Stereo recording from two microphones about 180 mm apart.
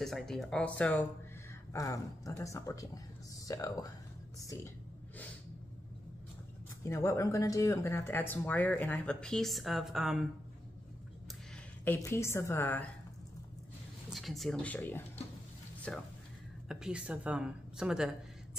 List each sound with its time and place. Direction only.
0.0 s speech: centre (ahead or behind)
1.7 s speech: 20° left (ahead or behind)
6.8 s speech: 15° left (ahead or behind); by 10.2 s centre (ahead or behind)
11.5 s a woman's voice: 10° left (ahead or behind)
14.1 s a woman's voice: centre (ahead or behind)